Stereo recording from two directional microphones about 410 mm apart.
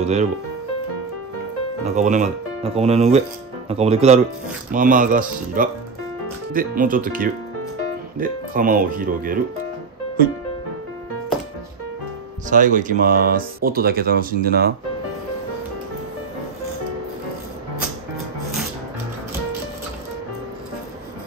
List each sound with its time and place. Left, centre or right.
0.0 s speech: centre
2.0 s speech: centre
12.4 s speech: centre